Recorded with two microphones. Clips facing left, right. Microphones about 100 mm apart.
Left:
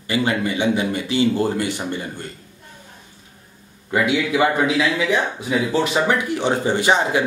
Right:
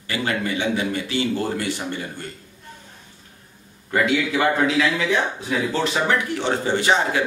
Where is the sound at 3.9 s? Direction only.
15° left (ahead or behind).